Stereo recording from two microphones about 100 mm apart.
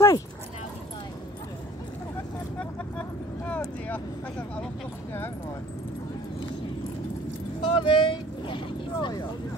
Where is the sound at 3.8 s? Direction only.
10° left (ahead or behind).